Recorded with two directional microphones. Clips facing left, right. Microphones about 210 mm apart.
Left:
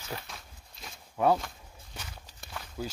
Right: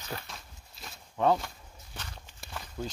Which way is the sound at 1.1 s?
10° left (ahead or behind).